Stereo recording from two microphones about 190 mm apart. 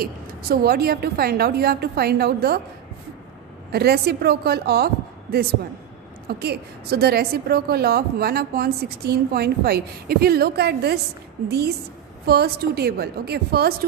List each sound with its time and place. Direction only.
0.0 s a woman's voice: 50° right (ahead or behind)
3.7 s a woman's voice: 55° right (ahead or behind)